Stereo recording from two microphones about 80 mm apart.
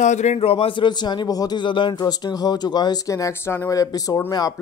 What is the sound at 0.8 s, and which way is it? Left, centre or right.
A man's voice, left.